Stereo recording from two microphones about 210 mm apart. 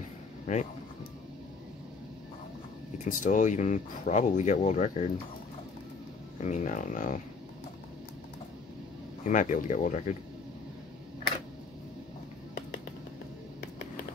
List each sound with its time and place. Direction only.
0.5 s speech: 35° left (ahead or behind)
3.0 s speech: 40° left (ahead or behind)
6.4 s speech: 35° left (ahead or behind)
9.2 s speech: 35° left (ahead or behind)